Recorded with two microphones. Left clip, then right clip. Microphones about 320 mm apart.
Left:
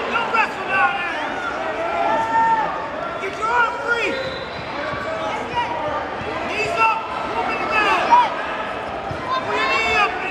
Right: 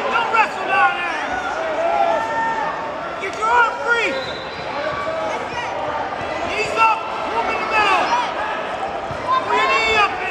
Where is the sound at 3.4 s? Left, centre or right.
Right.